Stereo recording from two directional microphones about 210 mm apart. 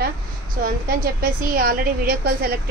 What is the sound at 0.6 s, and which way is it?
A woman's voice, 45° right (ahead or behind).